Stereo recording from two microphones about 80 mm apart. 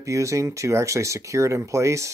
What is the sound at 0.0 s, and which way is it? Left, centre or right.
Speech, right.